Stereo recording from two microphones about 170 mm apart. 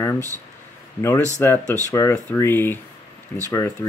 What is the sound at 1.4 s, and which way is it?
Speech, 15° left (ahead or behind).